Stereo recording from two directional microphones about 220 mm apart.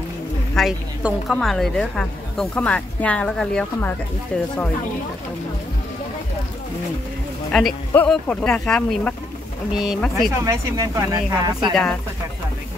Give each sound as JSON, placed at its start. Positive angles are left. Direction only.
{"t": 0.6, "sound": "a woman's voice", "side_deg": 0}
{"t": 7.5, "sound": "a woman's voice", "side_deg": 5}
{"t": 10.4, "sound": "speech", "side_deg": -15}
{"t": 11.7, "sound": "a woman's voice", "side_deg": 0}